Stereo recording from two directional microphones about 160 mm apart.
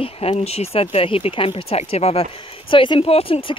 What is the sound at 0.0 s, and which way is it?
Speech, 40° left (ahead or behind).